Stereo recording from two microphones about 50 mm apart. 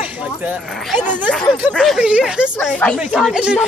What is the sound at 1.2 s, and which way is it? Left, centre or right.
Speech, centre.